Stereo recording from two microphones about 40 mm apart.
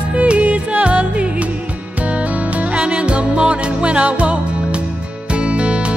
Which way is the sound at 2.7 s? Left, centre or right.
Right.